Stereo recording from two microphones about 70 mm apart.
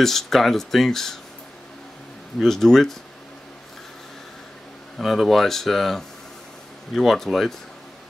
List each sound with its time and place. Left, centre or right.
0.0 s speech: centre
2.4 s speech: centre
4.9 s speech: centre